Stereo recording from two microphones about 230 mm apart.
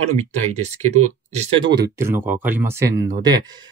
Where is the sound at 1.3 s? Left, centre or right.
Right.